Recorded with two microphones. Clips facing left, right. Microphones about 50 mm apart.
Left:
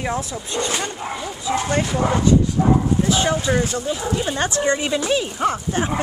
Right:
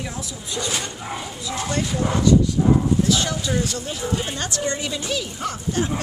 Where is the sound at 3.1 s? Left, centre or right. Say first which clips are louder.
Left 3 dB; left.